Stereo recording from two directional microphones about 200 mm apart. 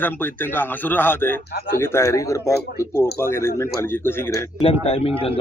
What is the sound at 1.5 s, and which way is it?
Speech, 50° left (ahead or behind).